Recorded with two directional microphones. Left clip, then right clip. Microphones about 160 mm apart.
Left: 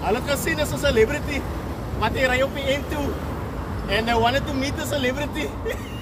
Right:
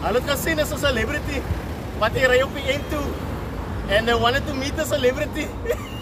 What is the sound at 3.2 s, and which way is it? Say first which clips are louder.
Vehicle: even; 20° left (ahead or behind).